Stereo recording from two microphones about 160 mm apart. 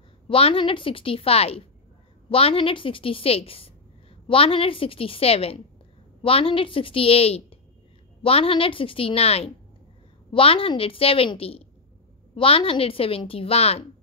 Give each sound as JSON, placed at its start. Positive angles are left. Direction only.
{"t": 0.3, "sound": "a woman's voice", "side_deg": 35}